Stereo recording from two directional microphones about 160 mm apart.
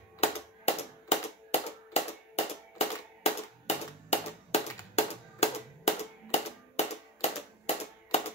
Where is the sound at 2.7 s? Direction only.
40° left (ahead or behind).